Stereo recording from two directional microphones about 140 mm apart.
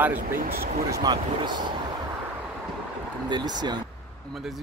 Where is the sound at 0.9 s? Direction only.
25° right (ahead or behind).